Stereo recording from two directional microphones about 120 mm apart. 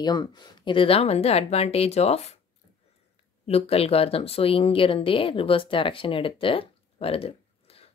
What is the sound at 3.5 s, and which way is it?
Speech, 55° left (ahead or behind).